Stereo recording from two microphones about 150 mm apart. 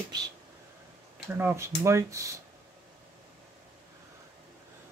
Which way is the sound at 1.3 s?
15° right (ahead or behind).